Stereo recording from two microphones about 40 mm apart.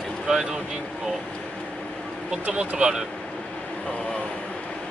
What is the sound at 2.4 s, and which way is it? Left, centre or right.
Speech, right.